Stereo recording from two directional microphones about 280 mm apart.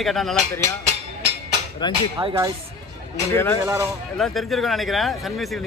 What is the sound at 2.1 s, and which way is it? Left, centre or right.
Speech, centre.